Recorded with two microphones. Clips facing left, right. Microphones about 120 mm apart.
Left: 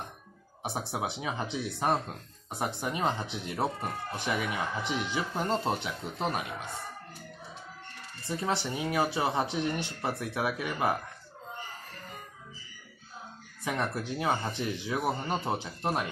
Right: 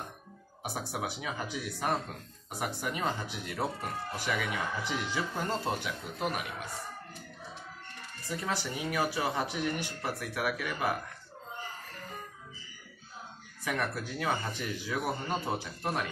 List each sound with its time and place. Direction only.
0.6 s speech: 25° left (ahead or behind)
8.3 s speech: 25° left (ahead or behind)
13.7 s speech: 20° left (ahead or behind)